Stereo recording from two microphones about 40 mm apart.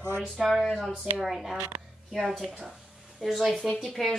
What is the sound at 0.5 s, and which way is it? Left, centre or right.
Speech, centre.